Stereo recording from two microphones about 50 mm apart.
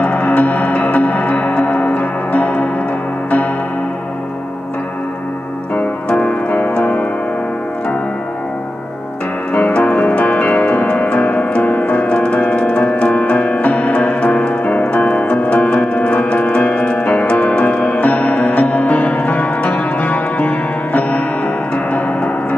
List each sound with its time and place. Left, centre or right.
0.0 s music: left
6.0 s music: centre
9.5 s music: left
21.7 s gong: left